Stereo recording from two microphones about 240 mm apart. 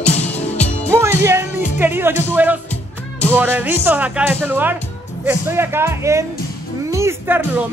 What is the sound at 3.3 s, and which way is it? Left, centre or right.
Speech, centre.